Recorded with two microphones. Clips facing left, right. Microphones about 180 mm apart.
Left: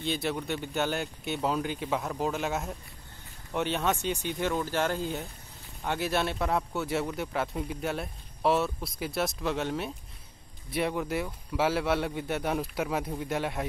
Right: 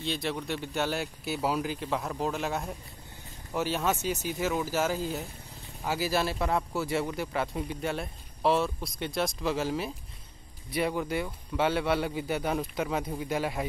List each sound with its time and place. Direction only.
0.0 s speech: centre (ahead or behind)